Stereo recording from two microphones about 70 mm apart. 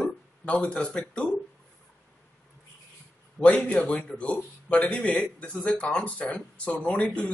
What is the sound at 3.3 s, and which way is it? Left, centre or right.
Speech, centre.